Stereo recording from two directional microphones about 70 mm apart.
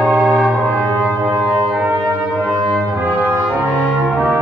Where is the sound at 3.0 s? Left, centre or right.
Right.